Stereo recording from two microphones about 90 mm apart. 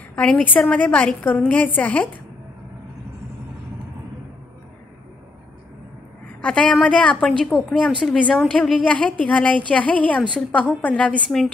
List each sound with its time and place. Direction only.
0.1 s a woman's voice: 15° left (ahead or behind)
6.2 s a sound: 15° left (ahead or behind)
6.7 s a woman's voice: 15° left (ahead or behind)